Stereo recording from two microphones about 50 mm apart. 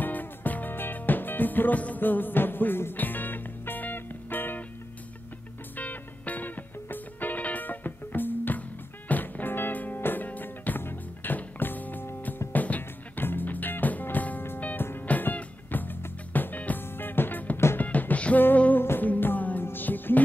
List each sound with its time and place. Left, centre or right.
0.0 s music: left
5.8 s music: left
14.8 s music: left
15.0 s music: left
18.8 s music: left